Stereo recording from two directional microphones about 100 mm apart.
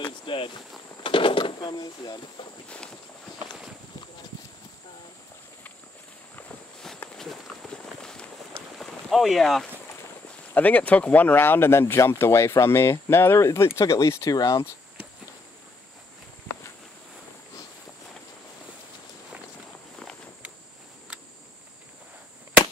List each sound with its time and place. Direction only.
0.0 s a sound: 60° left (ahead or behind); by 2.1 s 45° left (ahead or behind)
7.2 s run: 5° left (ahead or behind)
10.5 s speech: 15° left (ahead or behind); by 14.6 s 35° left (ahead or behind)